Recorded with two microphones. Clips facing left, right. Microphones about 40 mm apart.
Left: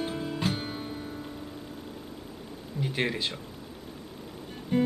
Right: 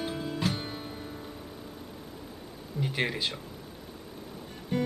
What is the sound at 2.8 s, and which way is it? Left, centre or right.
Speech, centre.